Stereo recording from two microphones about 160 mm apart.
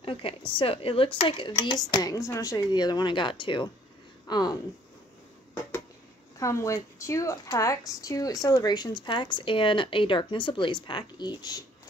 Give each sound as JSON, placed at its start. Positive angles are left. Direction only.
{"t": 0.0, "sound": "a sound", "side_deg": 35}
{"t": 0.6, "sound": "a woman's voice", "side_deg": 35}
{"t": 6.3, "sound": "a woman's voice", "side_deg": 20}